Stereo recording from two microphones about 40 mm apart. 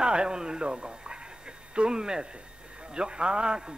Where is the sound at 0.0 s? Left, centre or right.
Right.